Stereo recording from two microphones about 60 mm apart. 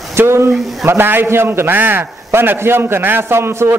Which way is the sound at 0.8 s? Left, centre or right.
Right.